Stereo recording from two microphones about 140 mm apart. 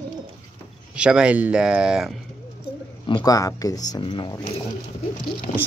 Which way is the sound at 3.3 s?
25° left (ahead or behind).